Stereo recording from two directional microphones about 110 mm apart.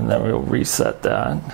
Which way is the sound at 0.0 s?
15° right (ahead or behind).